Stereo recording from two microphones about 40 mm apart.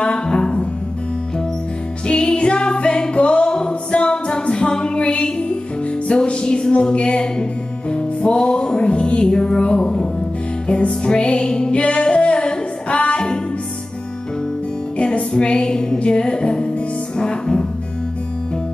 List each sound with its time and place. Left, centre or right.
0.0 s music: left
2.0 s music: left
15.0 s music: left